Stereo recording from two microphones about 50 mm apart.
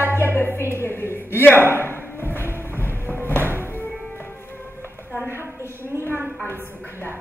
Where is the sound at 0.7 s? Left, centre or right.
Left.